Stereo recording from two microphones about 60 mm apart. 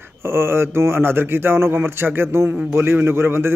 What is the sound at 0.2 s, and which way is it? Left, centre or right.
A man's voice, right.